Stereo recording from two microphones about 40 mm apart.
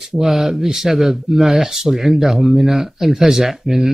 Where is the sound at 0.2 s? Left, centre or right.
Centre.